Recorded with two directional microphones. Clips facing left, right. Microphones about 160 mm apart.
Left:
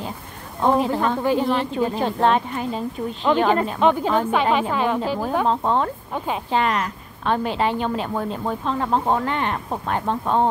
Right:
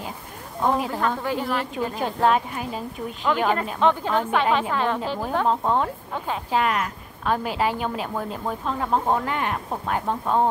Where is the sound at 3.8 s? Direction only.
15° left (ahead or behind).